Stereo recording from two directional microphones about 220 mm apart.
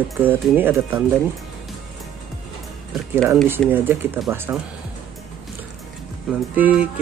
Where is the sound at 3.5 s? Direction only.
10° right (ahead or behind).